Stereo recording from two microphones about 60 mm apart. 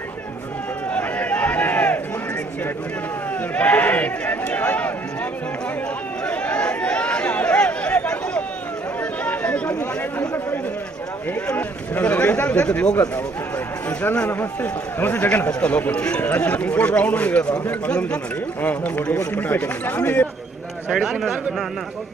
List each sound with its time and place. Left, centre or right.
0.9 s a sound: left
3.5 s run: left
6.2 s chatter: left
9.2 s a sound: left
11.5 s a man's voice: left
18.6 s a man's voice: left
20.9 s speech: centre